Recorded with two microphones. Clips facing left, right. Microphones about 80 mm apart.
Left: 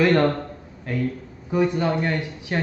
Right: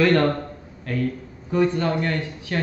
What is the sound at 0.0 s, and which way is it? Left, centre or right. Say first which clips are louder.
Speech: even; centre.